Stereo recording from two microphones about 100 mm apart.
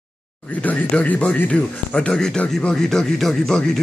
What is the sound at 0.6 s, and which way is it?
Speech, 15° left (ahead or behind).